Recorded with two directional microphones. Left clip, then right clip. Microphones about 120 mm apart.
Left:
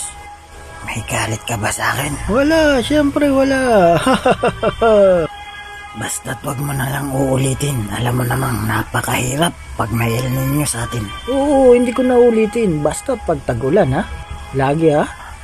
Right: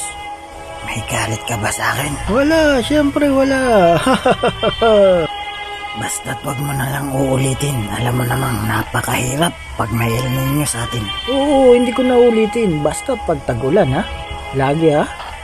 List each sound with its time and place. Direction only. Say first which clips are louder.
0.8 s speech: even; centre (ahead or behind)
11.1 s speech: right 1 dB; 25° right (ahead or behind)
11.7 s speech: even; centre (ahead or behind)